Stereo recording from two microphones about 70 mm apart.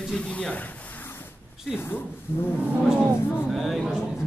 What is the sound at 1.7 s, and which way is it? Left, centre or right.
Speech, left.